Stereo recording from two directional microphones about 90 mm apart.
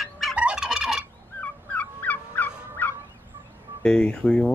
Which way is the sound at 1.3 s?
15° left (ahead or behind).